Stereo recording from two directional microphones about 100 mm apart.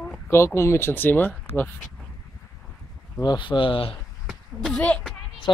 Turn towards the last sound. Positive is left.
turn(degrees=10)  # may be behind; listen again after turning